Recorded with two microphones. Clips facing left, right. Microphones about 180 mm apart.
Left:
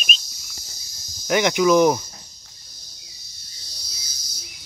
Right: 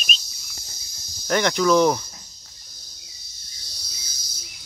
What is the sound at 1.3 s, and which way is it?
Speech, 10° left (ahead or behind).